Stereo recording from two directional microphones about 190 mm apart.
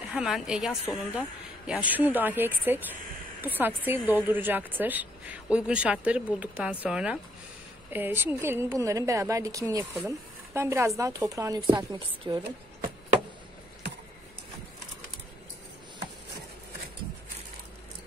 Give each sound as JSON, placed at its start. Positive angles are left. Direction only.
{"t": 0.1, "sound": "a woman's voice", "side_deg": -5}